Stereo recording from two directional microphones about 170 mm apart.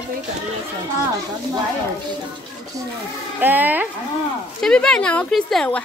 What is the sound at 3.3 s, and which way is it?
Speech, 10° right (ahead or behind).